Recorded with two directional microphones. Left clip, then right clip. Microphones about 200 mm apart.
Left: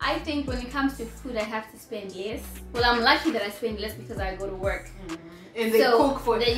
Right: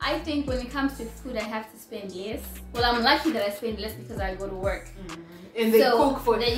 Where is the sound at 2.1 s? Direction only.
15° left (ahead or behind).